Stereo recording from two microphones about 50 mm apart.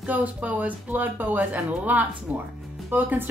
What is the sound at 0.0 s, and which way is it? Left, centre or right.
Speech, right.